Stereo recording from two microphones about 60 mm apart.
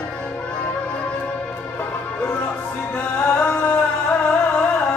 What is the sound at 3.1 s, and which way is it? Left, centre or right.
Music, left.